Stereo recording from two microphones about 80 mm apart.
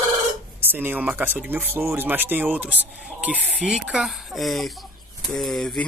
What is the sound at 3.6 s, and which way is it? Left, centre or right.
Speech, centre.